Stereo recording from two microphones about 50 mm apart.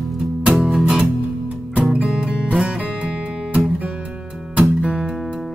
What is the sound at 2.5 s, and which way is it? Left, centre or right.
Music, centre.